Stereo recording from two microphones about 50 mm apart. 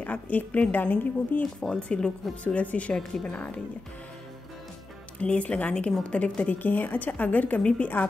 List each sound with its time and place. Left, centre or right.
0.0 s a woman's voice: left
1.4 s a woman's voice: centre
2.4 s speech: left
2.9 s a woman's voice: centre
3.3 s speech: left
5.2 s speech: left
6.6 s a woman's voice: left